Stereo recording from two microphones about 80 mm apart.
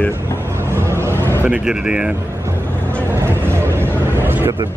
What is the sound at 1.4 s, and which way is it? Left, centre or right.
Speech, centre.